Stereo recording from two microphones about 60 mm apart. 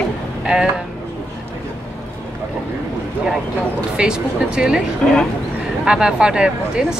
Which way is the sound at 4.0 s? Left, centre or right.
Centre.